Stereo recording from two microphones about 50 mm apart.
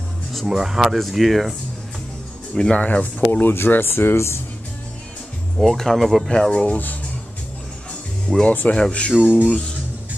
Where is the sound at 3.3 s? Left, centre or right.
Left.